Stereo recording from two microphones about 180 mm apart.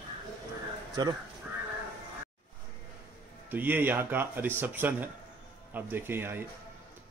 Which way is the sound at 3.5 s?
10° right (ahead or behind).